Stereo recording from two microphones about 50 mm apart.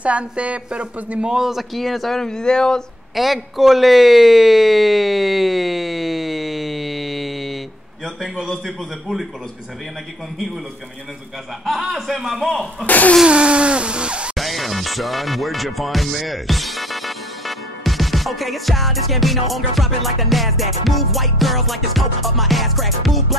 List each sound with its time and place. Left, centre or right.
0.0 s speech: right
1.3 s speech: centre
3.2 s speech: centre
11.6 s speech: centre
12.8 s a sound: left
13.2 s a sound: right
14.3 s music: centre